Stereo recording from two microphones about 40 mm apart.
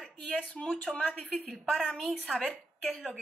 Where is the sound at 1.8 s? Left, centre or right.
Centre.